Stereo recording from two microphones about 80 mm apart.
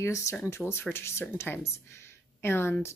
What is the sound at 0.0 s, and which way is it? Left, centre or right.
A woman's voice, left.